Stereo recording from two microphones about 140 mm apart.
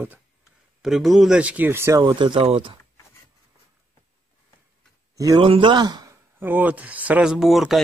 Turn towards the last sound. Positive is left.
turn(degrees=0)  # may be behind; listen again after turning